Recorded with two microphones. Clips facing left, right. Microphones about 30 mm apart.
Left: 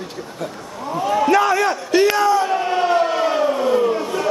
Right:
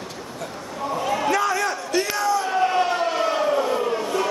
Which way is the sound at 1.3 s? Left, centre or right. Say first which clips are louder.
Left 6 dB; left.